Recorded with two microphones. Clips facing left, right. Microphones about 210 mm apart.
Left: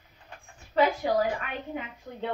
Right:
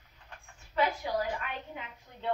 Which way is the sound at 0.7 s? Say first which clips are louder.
Left 6 dB; 90° left.